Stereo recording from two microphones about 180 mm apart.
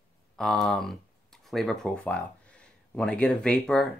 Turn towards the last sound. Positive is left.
turn(degrees=5)  # may be behind; listen again after turning